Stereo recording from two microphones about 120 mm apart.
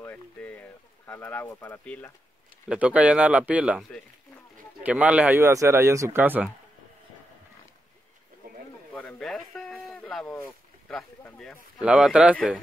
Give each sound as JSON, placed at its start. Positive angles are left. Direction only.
{"t": 0.0, "sound": "speech", "side_deg": 15}
{"t": 2.7, "sound": "speech", "side_deg": -10}
{"t": 4.8, "sound": "speech", "side_deg": -10}
{"t": 5.4, "sound": "speech", "side_deg": -25}
{"t": 9.2, "sound": "a sound", "side_deg": 0}
{"t": 10.0, "sound": "speech", "side_deg": 5}
{"t": 11.8, "sound": "speech", "side_deg": -5}